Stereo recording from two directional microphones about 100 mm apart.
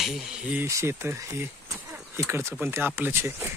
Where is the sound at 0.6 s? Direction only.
30° right (ahead or behind).